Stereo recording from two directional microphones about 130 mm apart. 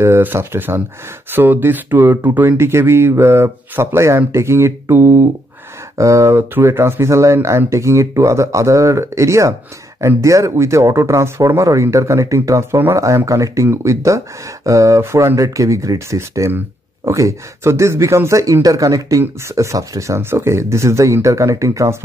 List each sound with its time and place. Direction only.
0.0 s speech: 15° right (ahead or behind)